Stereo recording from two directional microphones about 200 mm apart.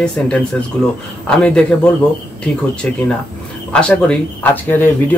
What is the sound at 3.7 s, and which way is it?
Speech, 5° left (ahead or behind).